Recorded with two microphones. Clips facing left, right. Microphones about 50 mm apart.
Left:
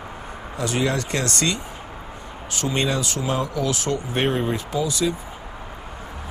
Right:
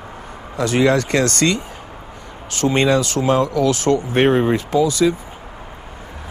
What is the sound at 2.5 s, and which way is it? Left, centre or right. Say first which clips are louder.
Speech: right 8 dB; right.